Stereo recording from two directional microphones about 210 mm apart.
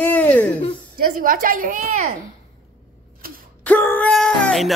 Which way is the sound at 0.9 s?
40° right (ahead or behind).